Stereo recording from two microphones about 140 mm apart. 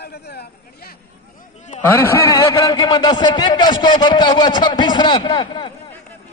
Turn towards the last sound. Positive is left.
turn(degrees=35)  # may be behind; listen again after turning